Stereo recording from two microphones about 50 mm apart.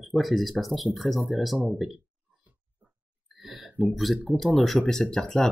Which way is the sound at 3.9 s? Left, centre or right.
Centre.